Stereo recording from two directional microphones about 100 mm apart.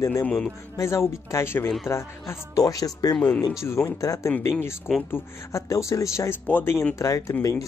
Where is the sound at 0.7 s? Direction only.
30° left (ahead or behind).